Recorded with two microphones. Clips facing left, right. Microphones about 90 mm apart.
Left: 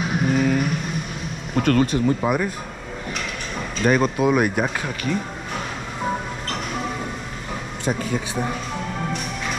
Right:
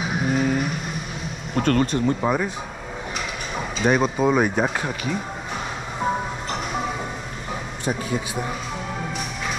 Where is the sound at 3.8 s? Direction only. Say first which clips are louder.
Left 1 dB; centre (ahead or behind).